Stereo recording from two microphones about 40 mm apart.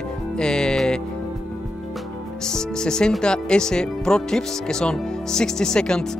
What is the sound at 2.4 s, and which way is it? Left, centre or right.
Speech, centre.